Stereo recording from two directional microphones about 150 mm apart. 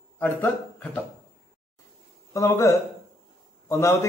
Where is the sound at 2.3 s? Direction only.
20° left (ahead or behind).